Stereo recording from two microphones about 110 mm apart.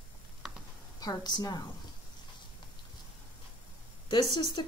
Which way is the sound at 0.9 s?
40° left (ahead or behind).